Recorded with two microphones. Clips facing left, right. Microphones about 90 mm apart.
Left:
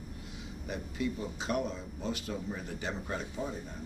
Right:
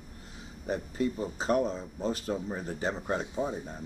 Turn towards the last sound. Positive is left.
turn(degrees=-30)  # may be behind; listen again after turning